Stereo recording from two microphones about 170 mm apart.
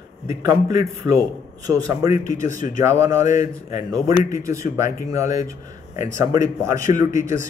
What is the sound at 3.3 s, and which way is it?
A man's voice, 45° left (ahead or behind).